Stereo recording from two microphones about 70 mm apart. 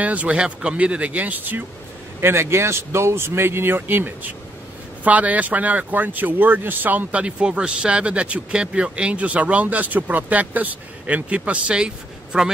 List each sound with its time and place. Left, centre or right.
0.0 s speech: right
2.1 s speech: right; by 12.4 s centre